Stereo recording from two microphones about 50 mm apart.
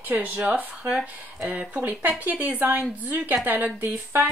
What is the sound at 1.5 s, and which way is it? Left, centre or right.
Speech, right.